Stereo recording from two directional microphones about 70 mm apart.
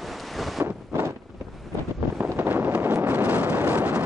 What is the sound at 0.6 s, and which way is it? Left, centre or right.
Wind noise, right.